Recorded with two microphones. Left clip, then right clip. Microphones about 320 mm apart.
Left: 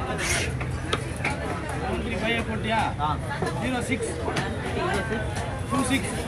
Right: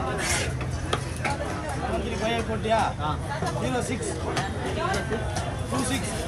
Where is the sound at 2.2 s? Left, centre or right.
Centre.